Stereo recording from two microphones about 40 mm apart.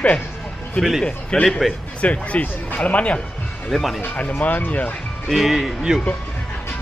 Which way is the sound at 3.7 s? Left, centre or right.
Centre.